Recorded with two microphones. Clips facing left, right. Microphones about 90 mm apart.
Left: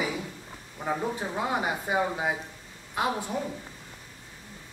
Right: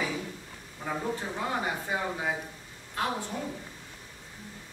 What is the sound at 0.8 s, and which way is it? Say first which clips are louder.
Speech: left 3 dB; 15° left (ahead or behind).